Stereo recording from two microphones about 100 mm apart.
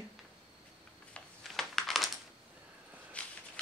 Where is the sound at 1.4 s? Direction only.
Centre (ahead or behind).